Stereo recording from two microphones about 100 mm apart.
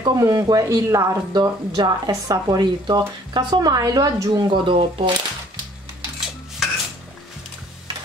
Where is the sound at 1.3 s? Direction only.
45° right (ahead or behind).